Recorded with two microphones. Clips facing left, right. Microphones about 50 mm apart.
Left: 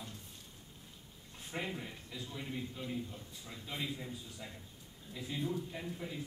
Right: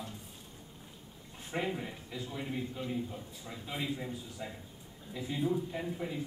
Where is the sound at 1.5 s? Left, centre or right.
Centre.